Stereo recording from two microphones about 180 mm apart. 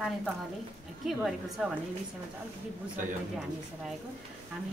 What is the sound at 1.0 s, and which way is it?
Speech, centre (ahead or behind).